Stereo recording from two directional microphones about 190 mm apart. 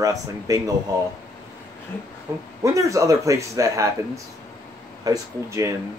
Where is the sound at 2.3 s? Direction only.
15° right (ahead or behind).